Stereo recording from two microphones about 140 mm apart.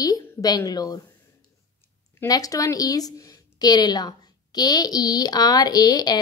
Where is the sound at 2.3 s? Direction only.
25° left (ahead or behind).